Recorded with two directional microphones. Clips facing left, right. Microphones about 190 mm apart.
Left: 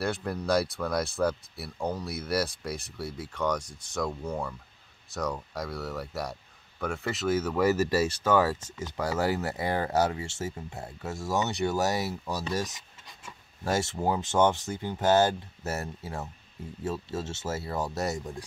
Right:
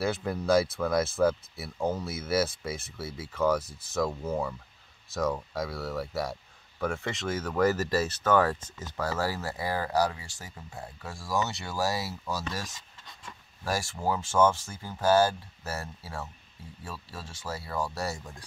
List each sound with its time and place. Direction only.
0.0 s speech: centre (ahead or behind); by 12.4 s 20° left (ahead or behind)
12.5 s a sound: 20° left (ahead or behind)
13.7 s speech: 20° left (ahead or behind)